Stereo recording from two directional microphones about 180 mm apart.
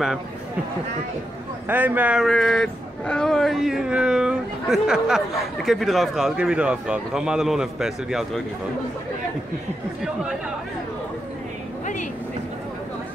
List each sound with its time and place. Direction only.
1.7 s speech: 10° right (ahead or behind)
11.8 s vehicle: 45° left (ahead or behind)